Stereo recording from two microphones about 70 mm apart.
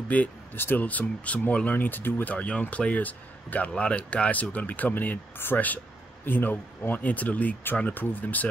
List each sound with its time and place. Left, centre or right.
0.1 s speech: centre